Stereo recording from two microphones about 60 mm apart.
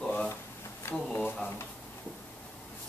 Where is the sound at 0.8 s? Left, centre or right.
Left.